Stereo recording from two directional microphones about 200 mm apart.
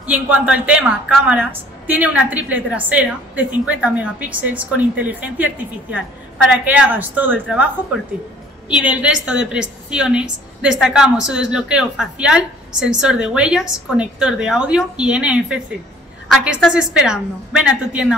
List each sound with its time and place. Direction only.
0.0 s a woman's voice: 5° right (ahead or behind)